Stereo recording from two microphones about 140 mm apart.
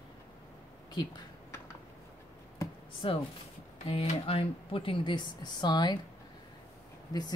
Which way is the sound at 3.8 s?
40° left (ahead or behind).